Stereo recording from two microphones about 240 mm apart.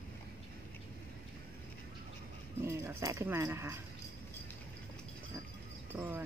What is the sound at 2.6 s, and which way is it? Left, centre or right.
Speech, centre.